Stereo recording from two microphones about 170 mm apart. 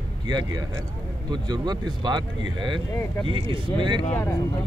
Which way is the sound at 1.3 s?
25° right (ahead or behind).